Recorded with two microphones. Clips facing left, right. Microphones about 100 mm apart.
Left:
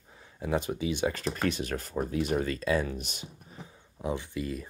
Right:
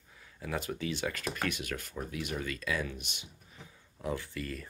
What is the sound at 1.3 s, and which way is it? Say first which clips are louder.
Speech: left 5 dB; 30° left (ahead or behind).